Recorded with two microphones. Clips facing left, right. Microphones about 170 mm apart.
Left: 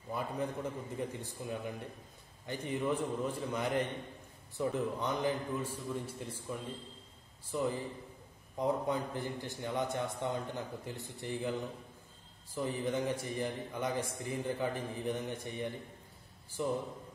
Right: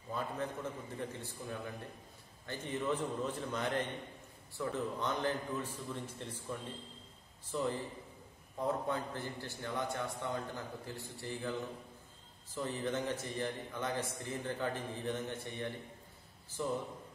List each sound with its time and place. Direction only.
0.1 s a man's voice: 10° left (ahead or behind)
12.5 s a man's voice: 10° left (ahead or behind)